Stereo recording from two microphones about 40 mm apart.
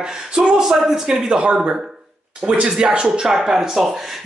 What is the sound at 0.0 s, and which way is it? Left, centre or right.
Speech, right.